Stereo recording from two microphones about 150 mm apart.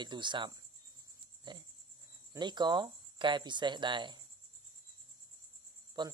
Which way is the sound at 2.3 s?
30° right (ahead or behind).